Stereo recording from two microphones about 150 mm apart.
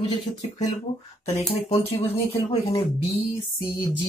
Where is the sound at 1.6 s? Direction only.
40° left (ahead or behind).